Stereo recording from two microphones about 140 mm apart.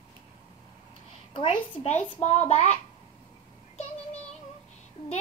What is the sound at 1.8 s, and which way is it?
Speech, 55° left (ahead or behind).